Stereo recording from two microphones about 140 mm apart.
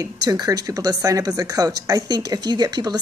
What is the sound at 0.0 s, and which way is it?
Speech, 25° right (ahead or behind).